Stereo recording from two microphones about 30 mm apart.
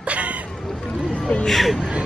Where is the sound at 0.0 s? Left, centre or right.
Right.